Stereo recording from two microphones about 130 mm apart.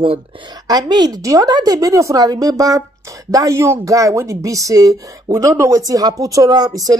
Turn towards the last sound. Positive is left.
turn(degrees=-30)  # may be behind; listen again after turning